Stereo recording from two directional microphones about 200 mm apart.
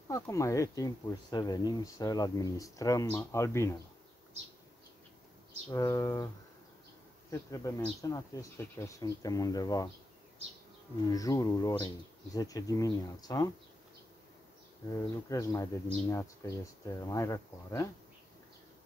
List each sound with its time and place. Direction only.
0.1 s speech: 15° left (ahead or behind)
5.7 s speech: 15° left (ahead or behind)
11.1 s speech: 20° left (ahead or behind)
14.9 s speech: 15° left (ahead or behind)